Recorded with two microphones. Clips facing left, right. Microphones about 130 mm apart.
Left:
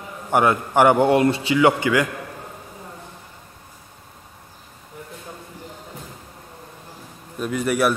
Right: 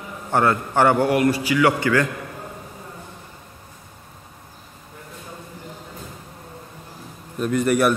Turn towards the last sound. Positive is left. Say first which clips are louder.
# right 2 dB
turn(degrees=0)  # may be behind; listen again after turning